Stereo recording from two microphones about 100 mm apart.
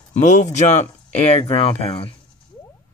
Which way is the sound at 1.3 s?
80° left.